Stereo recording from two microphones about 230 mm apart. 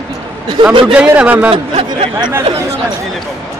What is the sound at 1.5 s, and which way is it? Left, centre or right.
Speech, right.